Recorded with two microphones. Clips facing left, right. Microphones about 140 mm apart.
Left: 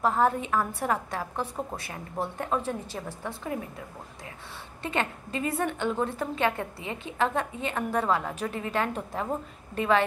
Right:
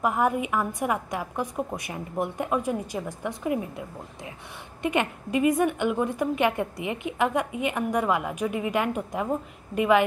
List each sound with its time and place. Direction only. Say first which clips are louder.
0.0 s a woman's voice: even; 15° right (ahead or behind)
4.8 s a woman's voice: right 4 dB; 15° right (ahead or behind)